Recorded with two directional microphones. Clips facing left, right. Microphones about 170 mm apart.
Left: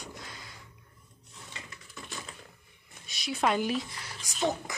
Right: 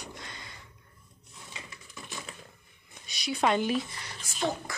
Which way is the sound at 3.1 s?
Centre (ahead or behind).